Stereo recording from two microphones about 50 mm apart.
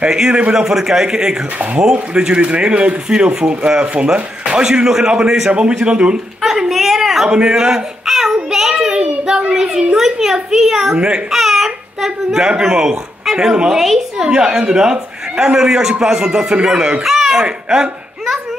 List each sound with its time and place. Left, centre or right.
0.1 s speech: centre
6.4 s a woman's voice: centre
7.2 s a woman's voice: centre
11.3 s speech: centre
13.7 s a woman's voice: centre
14.2 s a child's voice: centre
17.6 s speech: centre